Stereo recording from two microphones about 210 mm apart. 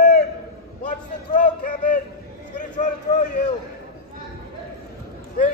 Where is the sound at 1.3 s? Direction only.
40° left (ahead or behind).